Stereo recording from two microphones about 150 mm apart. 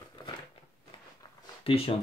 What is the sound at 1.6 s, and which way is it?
Speech, 40° left (ahead or behind).